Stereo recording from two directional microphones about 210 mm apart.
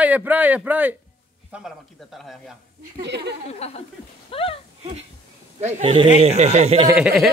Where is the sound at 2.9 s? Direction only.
55° right (ahead or behind).